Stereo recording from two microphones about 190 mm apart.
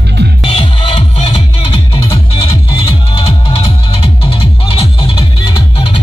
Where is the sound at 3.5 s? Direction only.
30° left (ahead or behind).